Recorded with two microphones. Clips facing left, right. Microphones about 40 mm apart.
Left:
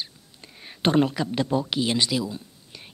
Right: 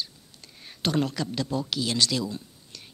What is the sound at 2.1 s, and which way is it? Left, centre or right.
Speech, centre.